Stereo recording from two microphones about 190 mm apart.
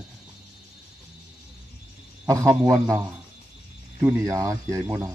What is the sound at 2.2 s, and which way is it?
Speech, 15° right (ahead or behind).